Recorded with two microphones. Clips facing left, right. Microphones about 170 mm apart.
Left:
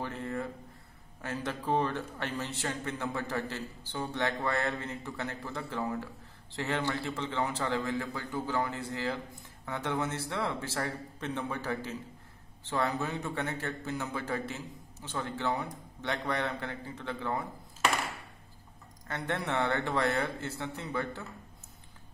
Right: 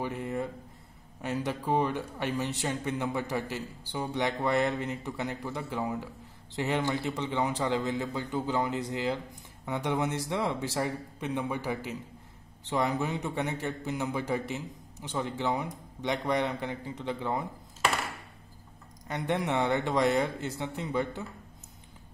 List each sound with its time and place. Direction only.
0.0 s a man's voice: 15° right (ahead or behind)
19.0 s a man's voice: 15° right (ahead or behind)